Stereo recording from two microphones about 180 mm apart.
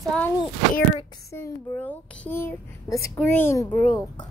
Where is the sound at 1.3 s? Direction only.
10° left (ahead or behind).